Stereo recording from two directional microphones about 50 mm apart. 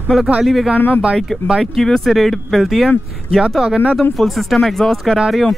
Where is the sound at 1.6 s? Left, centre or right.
Centre.